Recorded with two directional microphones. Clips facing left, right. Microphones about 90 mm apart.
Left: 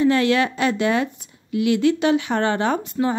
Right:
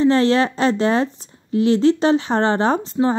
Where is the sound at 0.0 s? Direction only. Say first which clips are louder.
Right 2 dB; 30° right (ahead or behind).